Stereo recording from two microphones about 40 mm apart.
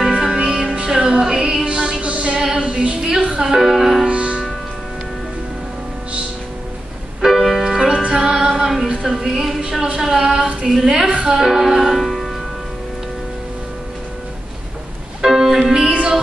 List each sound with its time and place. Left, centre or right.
0.2 s music: centre
2.0 s music: right
2.3 s female singing: centre
3.2 s music: right; by 4.0 s centre
4.0 s music: right
7.2 s music: centre
7.6 s music: centre
7.9 s music: right
8.2 s music: centre
9.6 s a sound: centre
10.7 s a woman's voice: centre
11.1 s music: centre
15.2 s music: centre
15.9 s music: right